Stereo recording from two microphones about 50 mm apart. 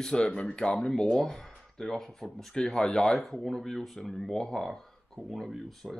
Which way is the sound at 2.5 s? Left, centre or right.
Centre.